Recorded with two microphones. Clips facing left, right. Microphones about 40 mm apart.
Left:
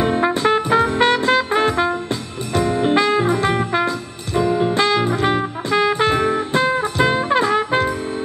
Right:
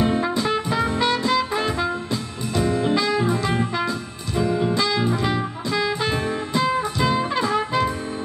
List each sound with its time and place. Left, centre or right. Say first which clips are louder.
0.0 s music: left 4 dB; left